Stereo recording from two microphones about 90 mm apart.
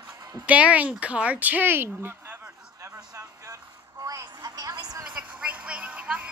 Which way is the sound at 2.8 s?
40° right (ahead or behind).